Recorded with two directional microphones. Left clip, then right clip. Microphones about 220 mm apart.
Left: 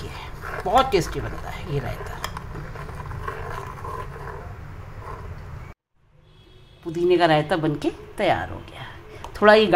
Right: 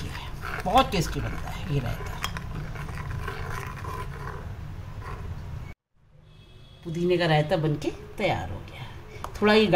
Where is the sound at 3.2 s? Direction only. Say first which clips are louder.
Left 4 dB; 30° right (ahead or behind).